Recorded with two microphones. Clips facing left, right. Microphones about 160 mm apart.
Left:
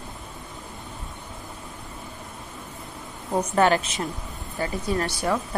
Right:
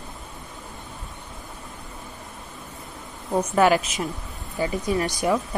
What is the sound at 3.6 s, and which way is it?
Speech, 10° right (ahead or behind).